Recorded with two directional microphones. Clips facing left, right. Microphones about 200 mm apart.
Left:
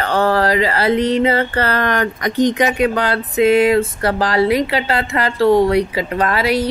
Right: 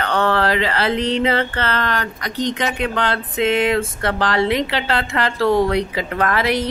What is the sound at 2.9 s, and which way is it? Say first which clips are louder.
Speech: left 3 dB; 40° left (ahead or behind).